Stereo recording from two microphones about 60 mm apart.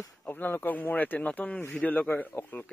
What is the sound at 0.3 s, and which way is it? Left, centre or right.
Speech, left.